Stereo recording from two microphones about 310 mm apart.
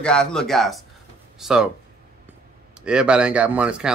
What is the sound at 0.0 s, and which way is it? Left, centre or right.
Speech, centre.